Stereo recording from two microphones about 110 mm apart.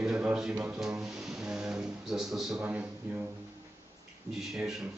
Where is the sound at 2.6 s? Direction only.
15° right (ahead or behind).